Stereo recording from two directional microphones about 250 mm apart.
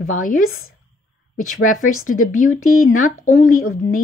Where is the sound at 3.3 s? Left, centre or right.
Left.